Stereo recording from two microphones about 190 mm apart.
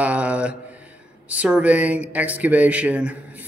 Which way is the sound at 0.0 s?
5° right (ahead or behind).